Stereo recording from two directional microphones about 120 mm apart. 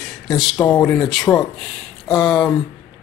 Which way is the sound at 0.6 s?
15° left (ahead or behind).